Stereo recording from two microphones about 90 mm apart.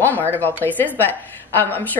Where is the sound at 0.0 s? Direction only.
20° left (ahead or behind).